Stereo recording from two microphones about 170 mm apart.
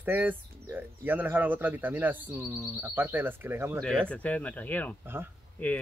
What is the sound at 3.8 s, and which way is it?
Speech, 5° left (ahead or behind).